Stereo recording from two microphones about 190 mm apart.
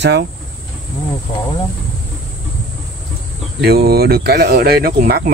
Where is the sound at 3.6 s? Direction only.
55° right (ahead or behind).